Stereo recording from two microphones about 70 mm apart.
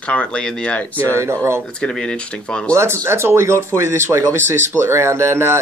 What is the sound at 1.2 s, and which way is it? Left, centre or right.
Speech, right.